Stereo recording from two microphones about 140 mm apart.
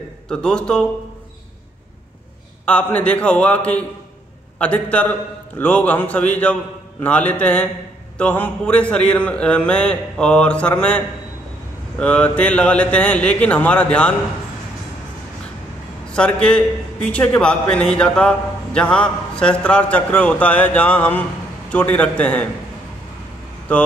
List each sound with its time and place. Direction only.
0.3 s a man's voice: 5° left (ahead or behind)
2.6 s a man's voice: 10° left (ahead or behind)
16.1 s a man's voice: 5° left (ahead or behind)